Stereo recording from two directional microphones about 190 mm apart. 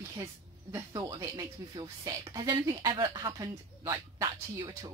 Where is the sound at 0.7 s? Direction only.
20° right (ahead or behind).